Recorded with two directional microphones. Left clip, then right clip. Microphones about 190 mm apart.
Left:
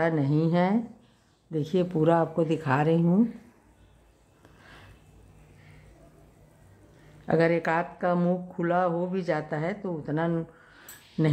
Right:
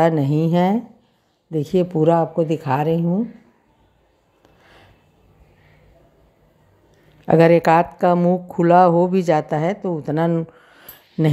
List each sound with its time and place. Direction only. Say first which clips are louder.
0.0 s speech: right 8 dB; 30° right (ahead or behind)
7.2 s speech: right 11 dB; 35° right (ahead or behind)